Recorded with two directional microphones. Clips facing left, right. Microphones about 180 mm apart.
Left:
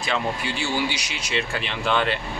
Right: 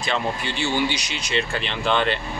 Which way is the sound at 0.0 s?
5° left (ahead or behind).